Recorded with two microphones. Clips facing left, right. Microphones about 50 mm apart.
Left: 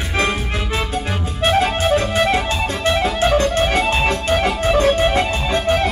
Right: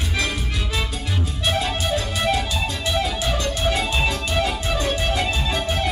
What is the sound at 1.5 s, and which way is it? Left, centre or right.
Music, left.